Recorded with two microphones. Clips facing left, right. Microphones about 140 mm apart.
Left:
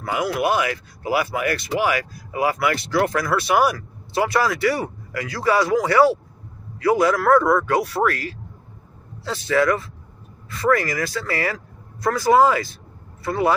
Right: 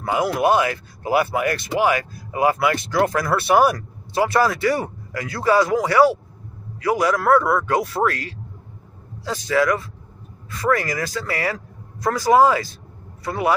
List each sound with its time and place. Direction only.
0.0 s speech: 25° right (ahead or behind)
7.7 s speech: 25° right (ahead or behind)